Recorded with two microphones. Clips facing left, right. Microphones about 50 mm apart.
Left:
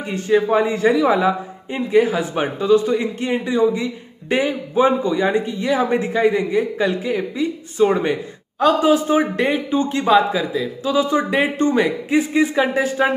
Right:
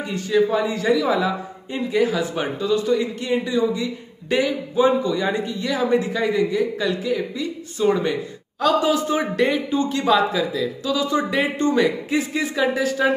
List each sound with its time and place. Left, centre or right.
0.0 s a man's voice: left